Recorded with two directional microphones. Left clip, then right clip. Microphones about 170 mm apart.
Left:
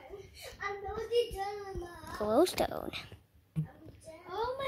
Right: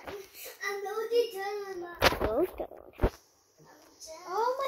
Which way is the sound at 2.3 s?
20° left (ahead or behind).